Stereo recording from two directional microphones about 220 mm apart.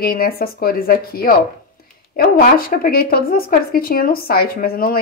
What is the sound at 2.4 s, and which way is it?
Speech, 40° left (ahead or behind).